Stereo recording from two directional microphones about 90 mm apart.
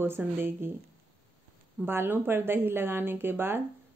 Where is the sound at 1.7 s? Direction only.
25° right (ahead or behind).